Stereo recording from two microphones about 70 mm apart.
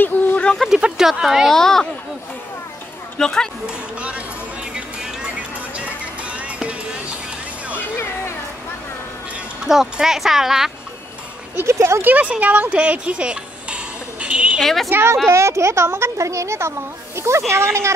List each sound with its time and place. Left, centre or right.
0.0 s a sound: left
0.7 s speech: centre
1.5 s speech: centre
3.2 s speech: centre
3.6 s speech: centre
4.7 s music: centre
9.7 s speech: centre
11.6 s speech: right
12.0 s speech: right
14.6 s speech: centre
14.9 s speech: right
15.2 s speech: right